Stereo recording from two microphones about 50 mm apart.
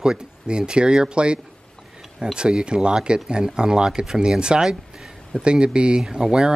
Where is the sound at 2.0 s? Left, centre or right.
Centre.